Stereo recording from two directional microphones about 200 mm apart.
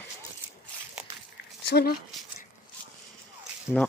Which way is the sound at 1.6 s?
55° left (ahead or behind).